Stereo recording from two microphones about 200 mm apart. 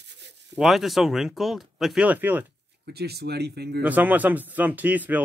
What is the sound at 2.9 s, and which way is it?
Speech, 55° right (ahead or behind).